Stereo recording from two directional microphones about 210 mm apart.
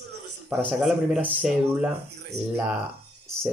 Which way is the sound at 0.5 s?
Centre (ahead or behind).